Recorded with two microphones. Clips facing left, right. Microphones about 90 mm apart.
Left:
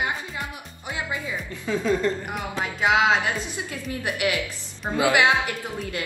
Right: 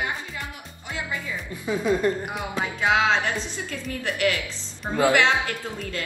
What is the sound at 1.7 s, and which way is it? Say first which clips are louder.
Speech: right 1 dB; 15° right (ahead or behind).